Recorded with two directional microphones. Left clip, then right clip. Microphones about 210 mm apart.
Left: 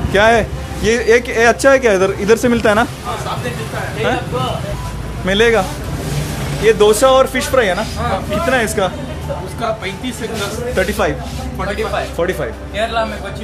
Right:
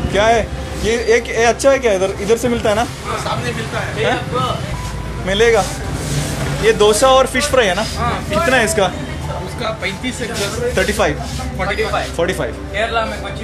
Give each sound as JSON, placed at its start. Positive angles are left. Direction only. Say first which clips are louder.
{"t": 0.1, "sound": "a man's voice", "louder": "left 2 dB", "side_deg": 40}
{"t": 5.2, "sound": "a man's voice", "louder": "left 1 dB", "side_deg": 30}
{"t": 6.6, "sound": "speech", "louder": "left 1 dB", "side_deg": 15}
{"t": 10.7, "sound": "speech", "louder": "even", "side_deg": 10}
{"t": 12.2, "sound": "speech", "louder": "even", "side_deg": 10}